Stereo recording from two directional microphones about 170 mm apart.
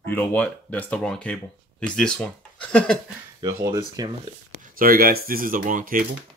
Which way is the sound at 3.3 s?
20° right (ahead or behind).